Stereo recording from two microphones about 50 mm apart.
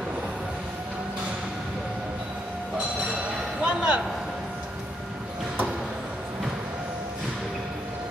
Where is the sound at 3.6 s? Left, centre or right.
Right.